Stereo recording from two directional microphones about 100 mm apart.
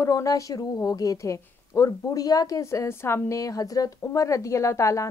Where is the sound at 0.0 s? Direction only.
35° left (ahead or behind).